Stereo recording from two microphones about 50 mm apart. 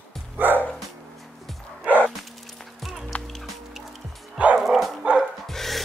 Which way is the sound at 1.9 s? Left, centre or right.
Right.